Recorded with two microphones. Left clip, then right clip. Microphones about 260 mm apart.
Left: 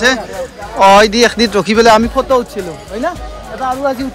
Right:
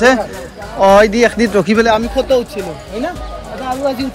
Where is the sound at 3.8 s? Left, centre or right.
Centre.